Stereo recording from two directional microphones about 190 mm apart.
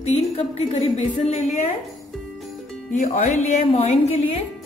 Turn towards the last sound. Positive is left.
turn(degrees=35)  # may be behind; listen again after turning